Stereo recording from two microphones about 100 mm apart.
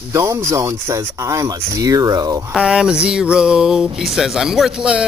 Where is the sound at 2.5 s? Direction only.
5° right (ahead or behind).